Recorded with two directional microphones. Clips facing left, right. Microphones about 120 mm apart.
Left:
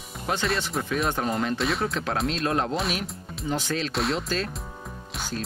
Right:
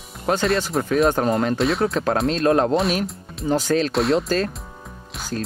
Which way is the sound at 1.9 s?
45° right (ahead or behind).